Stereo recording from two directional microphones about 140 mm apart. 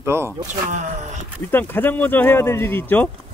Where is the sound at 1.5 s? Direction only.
15° left (ahead or behind).